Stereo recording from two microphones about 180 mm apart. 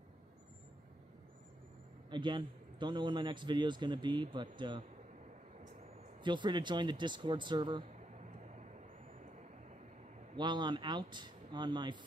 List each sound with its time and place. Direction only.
2.0 s a man's voice: 25° right (ahead or behind)
6.2 s a man's voice: 25° right (ahead or behind)
10.3 s a man's voice: 25° right (ahead or behind)